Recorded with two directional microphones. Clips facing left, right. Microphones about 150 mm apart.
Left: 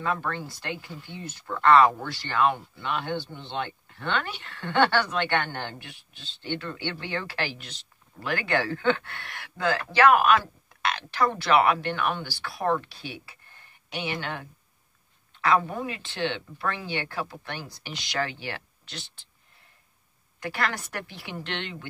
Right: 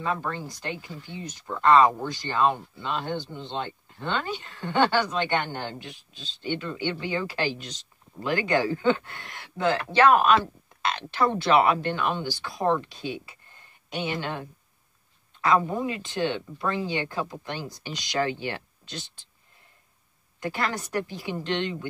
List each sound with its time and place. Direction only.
0.0 s speech: 20° right (ahead or behind)
20.3 s speech: 20° right (ahead or behind)